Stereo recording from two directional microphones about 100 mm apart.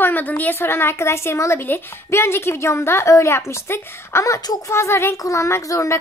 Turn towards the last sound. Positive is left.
turn(degrees=30)  # may be behind; listen again after turning